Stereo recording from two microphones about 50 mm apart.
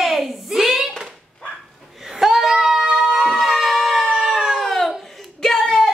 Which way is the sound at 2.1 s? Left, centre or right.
Centre.